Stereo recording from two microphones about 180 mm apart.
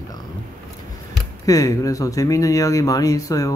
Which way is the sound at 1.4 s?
20° left (ahead or behind).